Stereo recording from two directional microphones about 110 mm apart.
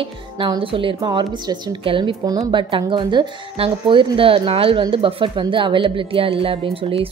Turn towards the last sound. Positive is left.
turn(degrees=-55)  # may be behind; listen again after turning